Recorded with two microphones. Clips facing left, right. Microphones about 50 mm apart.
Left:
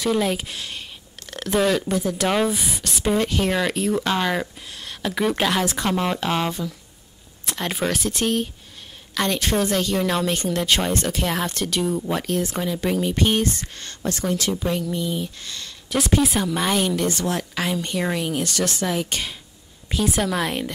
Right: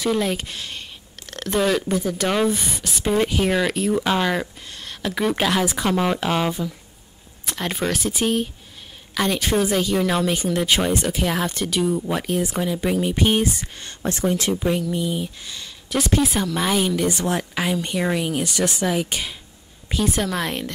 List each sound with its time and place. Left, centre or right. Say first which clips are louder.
0.0 s a woman's voice: even; centre
14.0 s a woman's voice: right 2 dB; right; by 17.1 s centre
17.1 s speech: right 1 dB; centre
17.6 s a woman's voice: right 2 dB; centre